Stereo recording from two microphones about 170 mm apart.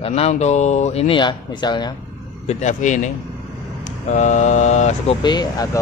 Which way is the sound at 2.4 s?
45° left (ahead or behind).